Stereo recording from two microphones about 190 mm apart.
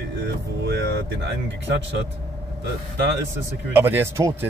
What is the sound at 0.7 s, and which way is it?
Speech, 65° right (ahead or behind).